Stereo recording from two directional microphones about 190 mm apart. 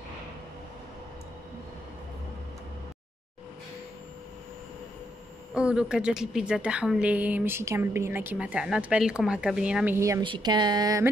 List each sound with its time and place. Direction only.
5.5 s a woman's voice: 5° right (ahead or behind)